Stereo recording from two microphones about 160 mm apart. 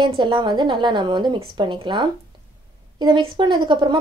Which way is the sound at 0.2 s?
30° right (ahead or behind).